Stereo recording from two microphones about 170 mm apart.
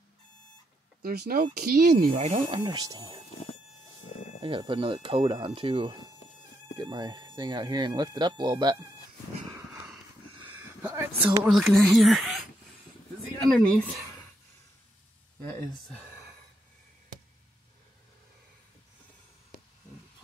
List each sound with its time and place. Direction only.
1.0 s speech: 65° right (ahead or behind)
2.1 s speech: 35° right (ahead or behind)
4.4 s speech: 30° right (ahead or behind)
10.5 s a sound: 10° right (ahead or behind)
11.4 s speech: centre (ahead or behind)
13.4 s speech: 5° left (ahead or behind)